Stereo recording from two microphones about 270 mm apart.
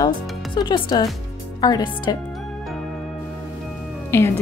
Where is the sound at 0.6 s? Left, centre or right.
Centre.